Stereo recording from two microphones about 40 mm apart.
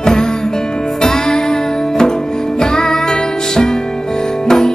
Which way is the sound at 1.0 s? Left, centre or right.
Centre.